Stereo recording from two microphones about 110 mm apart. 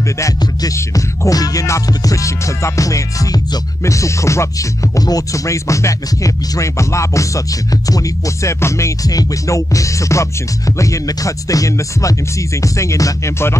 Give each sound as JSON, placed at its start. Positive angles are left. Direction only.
{"t": 0.2, "sound": "music", "side_deg": 30}